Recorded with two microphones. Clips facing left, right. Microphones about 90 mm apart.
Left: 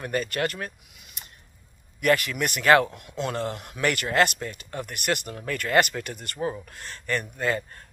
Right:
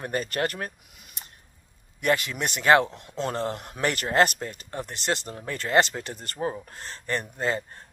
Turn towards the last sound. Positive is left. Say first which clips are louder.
# left 1 dB
turn(degrees=-25)  # may be behind; listen again after turning